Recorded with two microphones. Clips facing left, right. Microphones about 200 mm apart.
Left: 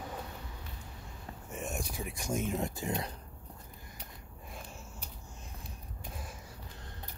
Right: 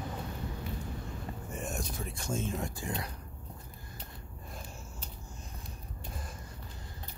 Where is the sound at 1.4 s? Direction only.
5° left (ahead or behind); by 3.1 s 20° left (ahead or behind).